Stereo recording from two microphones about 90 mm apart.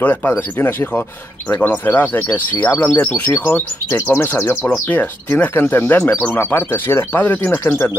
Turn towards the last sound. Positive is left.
turn(degrees=20)  # may be behind; listen again after turning